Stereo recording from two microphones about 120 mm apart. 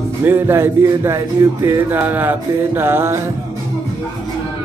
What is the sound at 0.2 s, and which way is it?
Speech, 20° right (ahead or behind).